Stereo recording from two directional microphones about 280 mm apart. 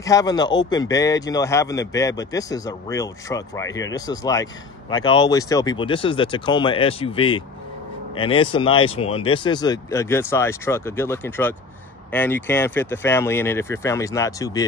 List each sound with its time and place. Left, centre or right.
0.0 s speech: centre